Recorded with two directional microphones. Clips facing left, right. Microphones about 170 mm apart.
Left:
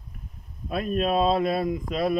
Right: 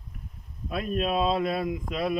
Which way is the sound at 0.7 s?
40° left (ahead or behind).